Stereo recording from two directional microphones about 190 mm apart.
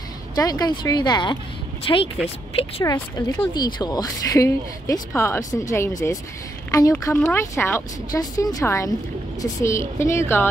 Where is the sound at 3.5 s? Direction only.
20° left (ahead or behind).